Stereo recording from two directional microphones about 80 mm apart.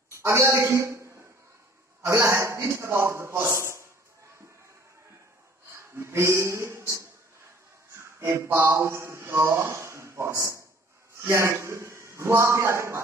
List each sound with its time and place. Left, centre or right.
0.2 s a woman's voice: right
5.8 s a sound: right
8.0 s speech: right